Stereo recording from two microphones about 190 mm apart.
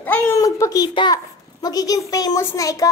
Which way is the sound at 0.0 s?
10° left (ahead or behind).